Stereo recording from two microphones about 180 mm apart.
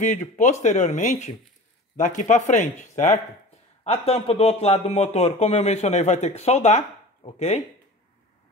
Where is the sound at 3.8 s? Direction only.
35° left (ahead or behind).